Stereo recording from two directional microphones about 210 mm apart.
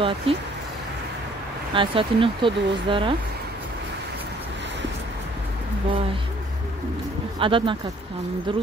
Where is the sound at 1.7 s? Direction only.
25° right (ahead or behind).